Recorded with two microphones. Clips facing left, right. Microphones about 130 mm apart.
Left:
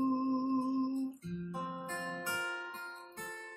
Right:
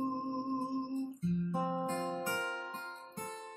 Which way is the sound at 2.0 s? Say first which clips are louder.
Right 4 dB; 40° right (ahead or behind).